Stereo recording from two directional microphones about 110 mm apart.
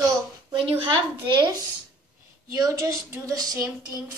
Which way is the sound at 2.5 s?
30° right (ahead or behind).